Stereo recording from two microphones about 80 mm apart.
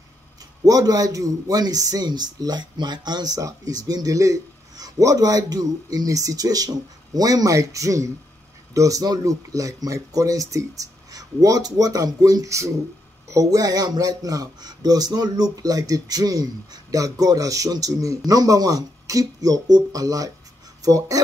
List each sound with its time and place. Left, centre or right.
0.7 s speech: right